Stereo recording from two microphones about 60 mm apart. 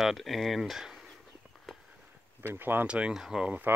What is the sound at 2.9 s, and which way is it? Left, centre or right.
Speech, centre.